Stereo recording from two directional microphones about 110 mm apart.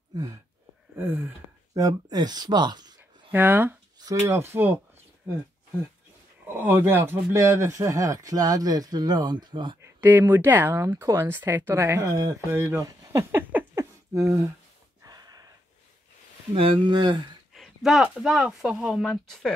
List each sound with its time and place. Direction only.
0.1 s a sound: 35° right (ahead or behind)
0.9 s speech: 20° right (ahead or behind)
1.7 s speech: 35° right (ahead or behind)
3.3 s speech: 20° right (ahead or behind)
6.4 s speech: 20° right (ahead or behind); by 9.8 s 45° right (ahead or behind)
9.8 s speech: 20° right (ahead or behind)
13.7 s a sound: 30° right (ahead or behind)
16.5 s speech: 55° right (ahead or behind)
16.9 s speech: 40° right (ahead or behind)
17.6 s speech: centre (ahead or behind)